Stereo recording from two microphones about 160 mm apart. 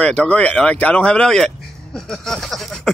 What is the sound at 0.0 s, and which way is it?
Speech, 5° left (ahead or behind).